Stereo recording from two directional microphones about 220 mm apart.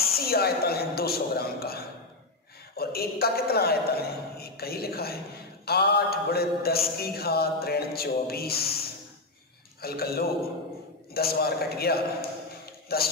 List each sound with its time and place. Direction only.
0.1 s a man's voice: 45° left (ahead or behind)